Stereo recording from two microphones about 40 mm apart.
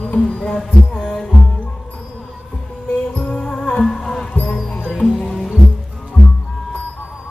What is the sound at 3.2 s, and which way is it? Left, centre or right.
Music, left.